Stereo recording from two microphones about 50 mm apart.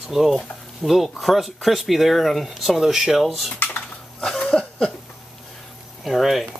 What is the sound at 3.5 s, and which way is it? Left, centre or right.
Typing, left.